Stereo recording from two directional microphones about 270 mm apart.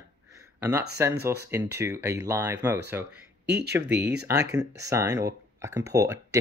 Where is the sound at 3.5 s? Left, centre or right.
Right.